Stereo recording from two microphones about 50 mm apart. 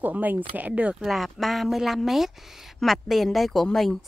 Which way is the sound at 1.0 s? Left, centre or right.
Centre.